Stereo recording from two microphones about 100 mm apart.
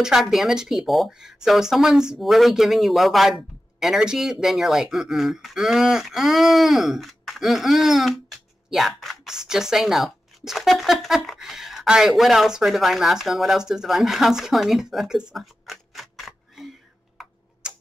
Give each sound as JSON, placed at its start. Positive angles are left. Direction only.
{"t": 0.0, "sound": "speech", "side_deg": -5}
{"t": 17.2, "sound": "tick-tock", "side_deg": -10}